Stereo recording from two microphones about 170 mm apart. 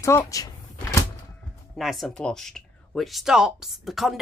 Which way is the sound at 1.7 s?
Centre (ahead or behind).